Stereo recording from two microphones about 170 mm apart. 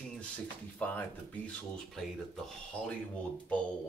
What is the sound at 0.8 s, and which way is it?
Speech, 10° left (ahead or behind).